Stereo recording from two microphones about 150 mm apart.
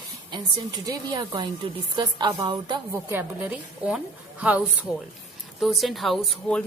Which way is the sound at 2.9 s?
15° right (ahead or behind).